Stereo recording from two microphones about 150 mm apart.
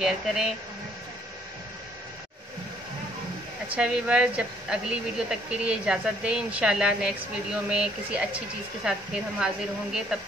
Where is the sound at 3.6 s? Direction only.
5° right (ahead or behind).